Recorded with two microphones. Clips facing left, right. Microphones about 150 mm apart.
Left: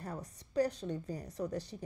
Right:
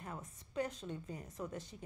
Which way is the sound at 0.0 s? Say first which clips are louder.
Left 4 dB; 35° left (ahead or behind).